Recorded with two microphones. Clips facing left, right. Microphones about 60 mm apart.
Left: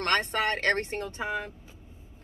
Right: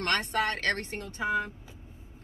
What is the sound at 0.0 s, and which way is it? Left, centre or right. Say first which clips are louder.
Speech: left 2 dB; left.